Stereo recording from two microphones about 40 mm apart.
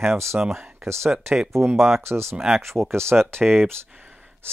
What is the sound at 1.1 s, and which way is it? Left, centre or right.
Speech, centre.